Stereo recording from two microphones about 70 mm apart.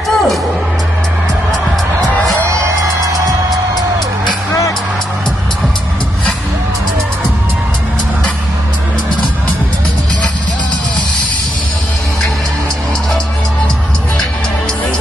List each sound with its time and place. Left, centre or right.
0.1 s music: centre
2.4 s music: right